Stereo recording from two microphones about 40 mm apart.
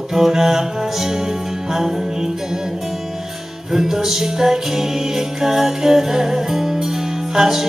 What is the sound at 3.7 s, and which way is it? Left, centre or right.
Music, centre.